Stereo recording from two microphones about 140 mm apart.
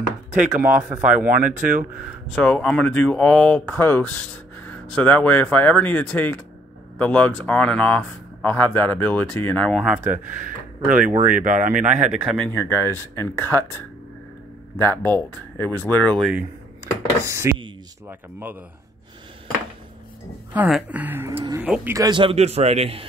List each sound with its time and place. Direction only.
0.6 s speech: 15° right (ahead or behind)
1.3 s speech: 75° right (ahead or behind)
2.3 s speech: 5° left (ahead or behind)
10.1 s speech: 65° right (ahead or behind)
12.4 s speech: 15° left (ahead or behind)
16.8 s speech: 20° right (ahead or behind)
20.5 s speech: 5° right (ahead or behind)
21.9 s speech: 25° right (ahead or behind)
22.2 s a man's voice: 50° right (ahead or behind)